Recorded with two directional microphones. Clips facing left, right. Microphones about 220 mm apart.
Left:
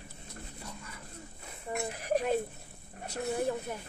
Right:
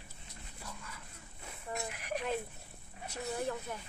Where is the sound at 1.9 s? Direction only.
35° left (ahead or behind).